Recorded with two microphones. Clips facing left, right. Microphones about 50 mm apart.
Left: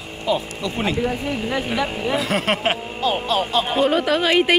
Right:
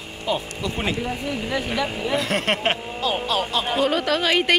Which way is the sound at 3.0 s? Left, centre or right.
Left.